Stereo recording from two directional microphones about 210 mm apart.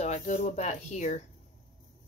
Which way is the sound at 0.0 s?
35° left (ahead or behind).